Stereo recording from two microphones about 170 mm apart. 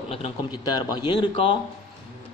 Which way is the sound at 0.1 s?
35° left (ahead or behind).